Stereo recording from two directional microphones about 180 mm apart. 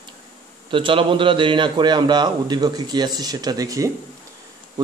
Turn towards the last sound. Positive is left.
turn(degrees=-20)  # may be behind; listen again after turning